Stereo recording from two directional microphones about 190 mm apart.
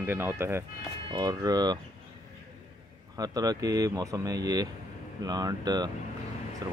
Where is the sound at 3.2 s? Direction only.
20° right (ahead or behind).